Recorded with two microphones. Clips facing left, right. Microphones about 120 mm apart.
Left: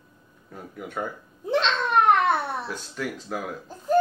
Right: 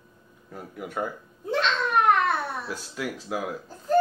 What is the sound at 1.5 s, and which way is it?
Babbling, 25° left (ahead or behind).